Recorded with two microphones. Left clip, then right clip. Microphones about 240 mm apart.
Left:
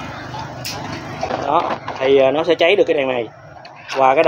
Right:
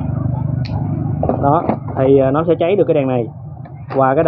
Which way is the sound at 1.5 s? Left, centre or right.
Centre.